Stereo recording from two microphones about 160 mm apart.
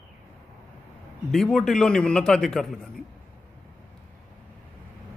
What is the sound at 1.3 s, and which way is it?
A man's voice, centre (ahead or behind).